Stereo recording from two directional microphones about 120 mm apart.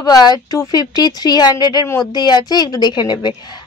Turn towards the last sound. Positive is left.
turn(degrees=40)  # may be behind; listen again after turning